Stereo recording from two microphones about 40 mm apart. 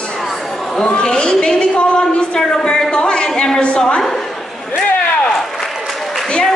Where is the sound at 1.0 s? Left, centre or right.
Centre.